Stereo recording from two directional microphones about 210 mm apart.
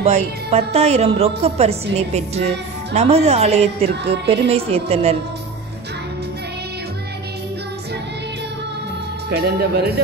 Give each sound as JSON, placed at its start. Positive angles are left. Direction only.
{"t": 0.0, "sound": "speech", "side_deg": -30}
{"t": 3.9, "sound": "speech", "side_deg": -55}
{"t": 4.3, "sound": "speech", "side_deg": -30}
{"t": 9.3, "sound": "speech", "side_deg": -50}